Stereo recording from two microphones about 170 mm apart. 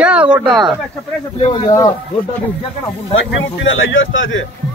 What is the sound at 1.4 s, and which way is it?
Speech, 25° left (ahead or behind).